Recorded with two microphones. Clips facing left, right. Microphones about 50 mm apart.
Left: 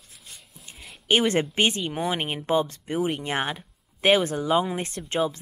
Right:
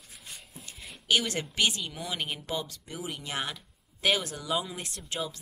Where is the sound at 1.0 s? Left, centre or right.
Left.